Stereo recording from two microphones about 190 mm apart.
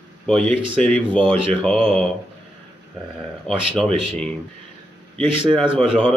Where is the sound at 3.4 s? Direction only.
5° left (ahead or behind).